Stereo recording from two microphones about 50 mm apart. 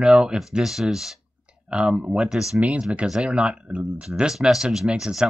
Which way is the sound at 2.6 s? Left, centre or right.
Right.